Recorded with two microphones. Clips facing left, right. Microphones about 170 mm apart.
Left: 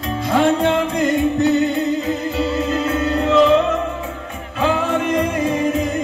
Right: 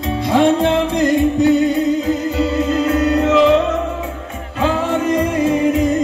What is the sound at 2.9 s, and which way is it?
Music, centre (ahead or behind).